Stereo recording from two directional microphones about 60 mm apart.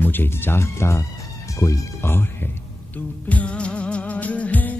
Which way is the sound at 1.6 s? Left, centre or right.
Left.